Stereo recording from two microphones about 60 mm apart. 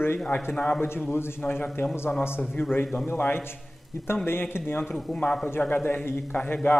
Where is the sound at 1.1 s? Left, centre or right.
Left.